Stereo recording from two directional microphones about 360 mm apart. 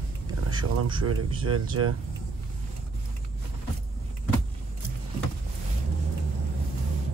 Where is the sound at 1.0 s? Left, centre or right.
Right.